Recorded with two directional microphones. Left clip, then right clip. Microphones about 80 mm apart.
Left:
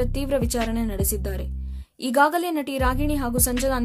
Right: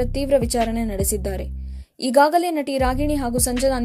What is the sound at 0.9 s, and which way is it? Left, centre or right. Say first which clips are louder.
A woman's voice: right 5 dB; right.